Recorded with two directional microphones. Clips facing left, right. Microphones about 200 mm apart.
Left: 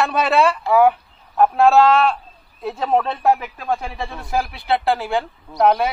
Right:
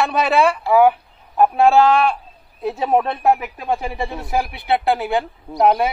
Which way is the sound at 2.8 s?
15° right (ahead or behind).